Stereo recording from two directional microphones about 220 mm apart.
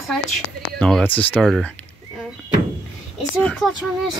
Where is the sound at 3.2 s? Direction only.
5° left (ahead or behind).